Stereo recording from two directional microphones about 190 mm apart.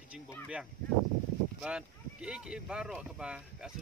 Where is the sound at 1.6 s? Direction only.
5° right (ahead or behind).